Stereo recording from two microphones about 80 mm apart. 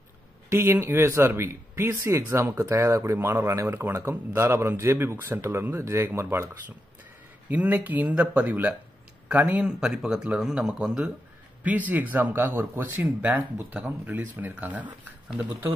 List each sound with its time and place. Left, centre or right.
0.5 s speech: right
7.4 s speech: right
9.7 s speech: centre
11.6 s speech: centre